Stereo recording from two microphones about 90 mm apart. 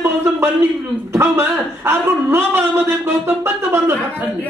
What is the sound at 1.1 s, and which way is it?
A man's voice, 30° right (ahead or behind).